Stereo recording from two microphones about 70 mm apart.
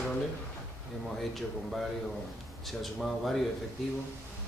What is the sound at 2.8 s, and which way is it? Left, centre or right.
Speech, centre.